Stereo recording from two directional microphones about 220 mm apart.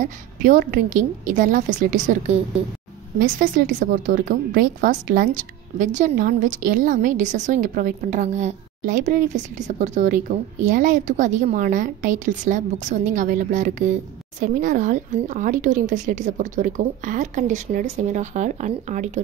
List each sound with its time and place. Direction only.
0.0 s a woman's voice: 35° right (ahead or behind)